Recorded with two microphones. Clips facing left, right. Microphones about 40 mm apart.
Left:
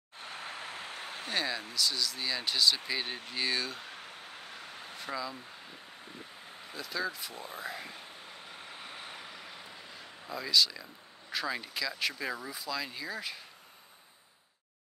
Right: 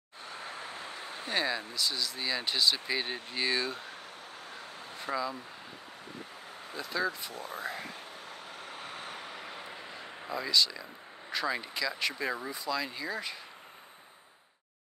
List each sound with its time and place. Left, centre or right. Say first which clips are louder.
0.2 s a sound: even; left
1.3 s speech: right 2 dB; centre
3.8 s vehicle: right 1 dB; left
5.0 s speech: right 4 dB; centre
6.7 s speech: right 3 dB; centre
8.5 s vehicle: right 3 dB; centre
8.7 s a sound: right 3 dB; centre
10.4 s speech: left 1 dB; centre